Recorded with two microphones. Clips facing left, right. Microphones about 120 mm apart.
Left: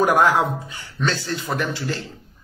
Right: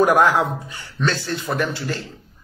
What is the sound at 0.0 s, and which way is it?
A man's voice, 35° right (ahead or behind).